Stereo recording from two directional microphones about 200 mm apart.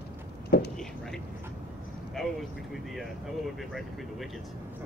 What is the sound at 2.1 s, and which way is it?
Speech, centre (ahead or behind).